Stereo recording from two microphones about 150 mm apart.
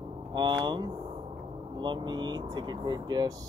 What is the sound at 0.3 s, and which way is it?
Speech, 30° right (ahead or behind).